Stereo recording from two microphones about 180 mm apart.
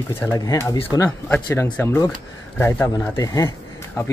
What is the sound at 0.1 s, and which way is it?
Speech, 15° left (ahead or behind).